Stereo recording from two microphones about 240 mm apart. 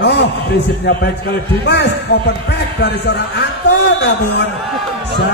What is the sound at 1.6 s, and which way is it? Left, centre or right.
A man's voice, left.